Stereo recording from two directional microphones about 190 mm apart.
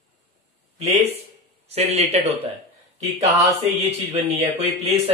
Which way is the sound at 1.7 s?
35° right (ahead or behind).